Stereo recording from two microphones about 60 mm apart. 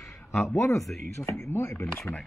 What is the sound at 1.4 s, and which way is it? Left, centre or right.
Speech, left.